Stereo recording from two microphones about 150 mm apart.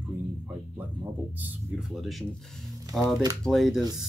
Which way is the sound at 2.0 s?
Centre (ahead or behind).